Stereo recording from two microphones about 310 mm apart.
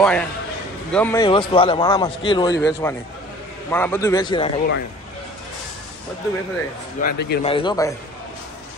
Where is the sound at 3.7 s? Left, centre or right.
Centre.